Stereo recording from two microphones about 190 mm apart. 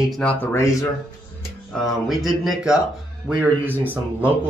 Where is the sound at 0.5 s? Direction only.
15° left (ahead or behind).